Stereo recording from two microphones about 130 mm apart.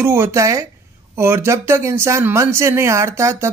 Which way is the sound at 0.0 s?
20° right (ahead or behind).